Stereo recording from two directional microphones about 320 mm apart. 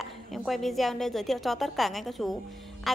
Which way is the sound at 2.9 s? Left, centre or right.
Centre.